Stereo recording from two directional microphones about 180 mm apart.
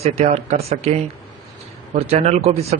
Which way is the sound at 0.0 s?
35° right (ahead or behind).